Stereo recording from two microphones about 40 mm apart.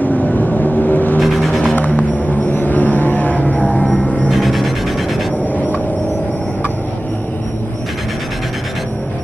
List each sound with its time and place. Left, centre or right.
0.0 s vehicle: left
1.4 s music: centre
1.7 s music: left
2.4 s music: left
3.6 s music: centre
4.3 s music: centre